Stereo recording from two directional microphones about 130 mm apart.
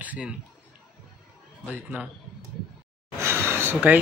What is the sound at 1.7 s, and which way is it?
Speech, 10° right (ahead or behind).